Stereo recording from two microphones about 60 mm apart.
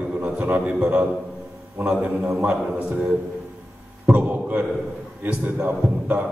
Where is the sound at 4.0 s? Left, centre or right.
Right.